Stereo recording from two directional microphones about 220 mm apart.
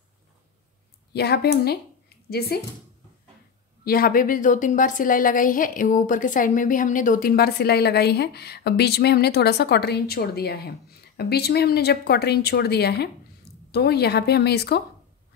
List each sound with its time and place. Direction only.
1.1 s a woman's voice: 45° left (ahead or behind)
3.8 s a woman's voice: 40° left (ahead or behind)